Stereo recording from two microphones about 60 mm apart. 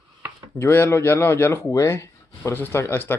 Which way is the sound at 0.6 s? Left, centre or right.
Left.